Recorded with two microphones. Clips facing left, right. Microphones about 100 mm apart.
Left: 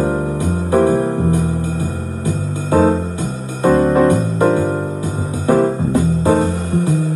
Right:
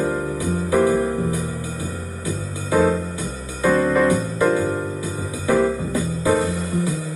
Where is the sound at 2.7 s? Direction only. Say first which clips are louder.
Left 4 dB; 55° left (ahead or behind).